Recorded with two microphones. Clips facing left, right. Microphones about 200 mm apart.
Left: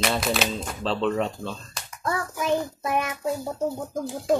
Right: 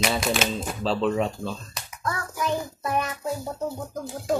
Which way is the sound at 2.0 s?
25° left (ahead or behind).